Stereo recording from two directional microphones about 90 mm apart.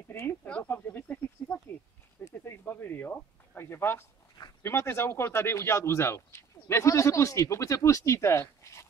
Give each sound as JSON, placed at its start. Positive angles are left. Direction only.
{"t": 0.1, "sound": "speech", "side_deg": 30}
{"t": 2.2, "sound": "a sound", "side_deg": 25}
{"t": 4.6, "sound": "speech", "side_deg": 25}